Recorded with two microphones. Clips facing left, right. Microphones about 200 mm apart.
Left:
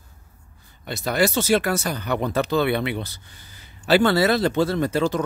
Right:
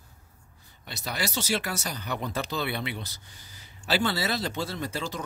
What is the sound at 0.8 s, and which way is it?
Speech, 55° left (ahead or behind).